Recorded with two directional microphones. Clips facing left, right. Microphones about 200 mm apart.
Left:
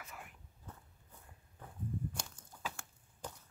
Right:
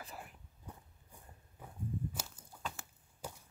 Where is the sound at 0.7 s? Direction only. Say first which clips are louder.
Right 2 dB; 10° right (ahead or behind).